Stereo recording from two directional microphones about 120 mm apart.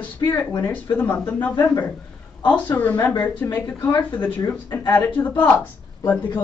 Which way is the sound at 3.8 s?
35° left (ahead or behind).